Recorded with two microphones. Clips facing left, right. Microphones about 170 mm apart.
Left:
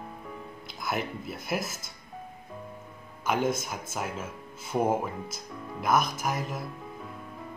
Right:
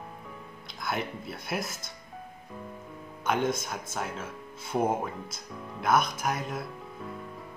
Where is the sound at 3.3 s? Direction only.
5° left (ahead or behind).